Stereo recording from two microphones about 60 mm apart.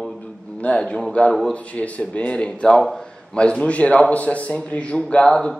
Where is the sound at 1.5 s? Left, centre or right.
Left.